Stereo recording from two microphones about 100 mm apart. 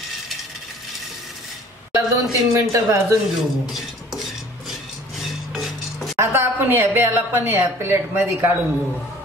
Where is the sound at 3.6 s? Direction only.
5° right (ahead or behind).